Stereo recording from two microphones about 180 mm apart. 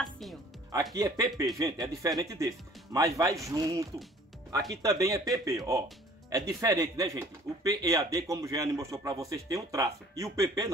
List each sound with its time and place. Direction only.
0.0 s music: centre (ahead or behind)
0.7 s speech: 20° right (ahead or behind)
4.8 s speech: 20° right (ahead or behind)